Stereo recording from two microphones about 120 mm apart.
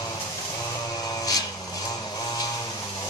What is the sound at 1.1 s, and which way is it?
Vehicle, 30° left (ahead or behind).